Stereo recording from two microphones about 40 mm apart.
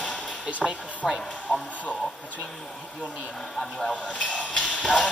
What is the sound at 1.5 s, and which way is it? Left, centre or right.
Speech, left.